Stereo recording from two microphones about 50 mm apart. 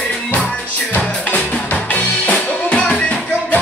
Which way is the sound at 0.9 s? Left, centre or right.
Left.